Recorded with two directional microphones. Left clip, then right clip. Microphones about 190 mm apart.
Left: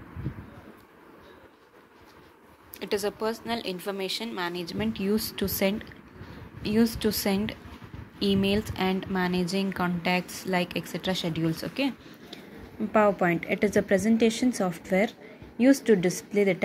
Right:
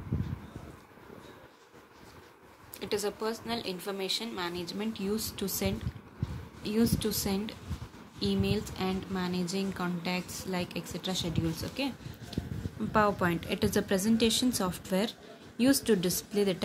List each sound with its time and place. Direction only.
2.8 s a woman's voice: 30° left (ahead or behind)
12.3 s a sound: 5° left (ahead or behind)
12.9 s a woman's voice: centre (ahead or behind)